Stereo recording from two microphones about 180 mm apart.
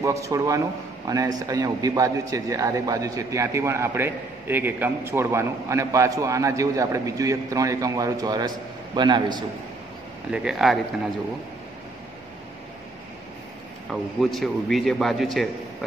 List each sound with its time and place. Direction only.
0.0 s a man's voice: 15° right (ahead or behind)
10.3 s a man's voice: 5° right (ahead or behind)
13.8 s a man's voice: centre (ahead or behind)